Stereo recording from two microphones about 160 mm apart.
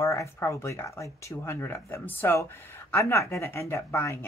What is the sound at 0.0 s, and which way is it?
Speech, 20° left (ahead or behind).